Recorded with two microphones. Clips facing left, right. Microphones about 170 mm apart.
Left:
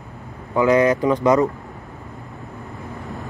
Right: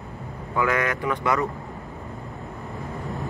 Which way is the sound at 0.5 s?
20° left (ahead or behind).